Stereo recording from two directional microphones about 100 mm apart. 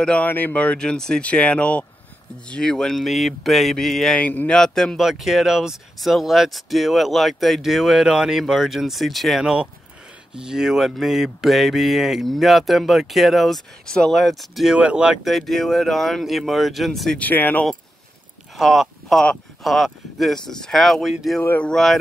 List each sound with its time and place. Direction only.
0.0 s speech: 10° left (ahead or behind)
4.2 s speech: 15° left (ahead or behind)
4.6 s speech: 5° left (ahead or behind)
17.2 s speech: 20° left (ahead or behind)
18.6 s speech: centre (ahead or behind)
21.4 s a sound: 20° left (ahead or behind)
21.6 s speech: 5° left (ahead or behind)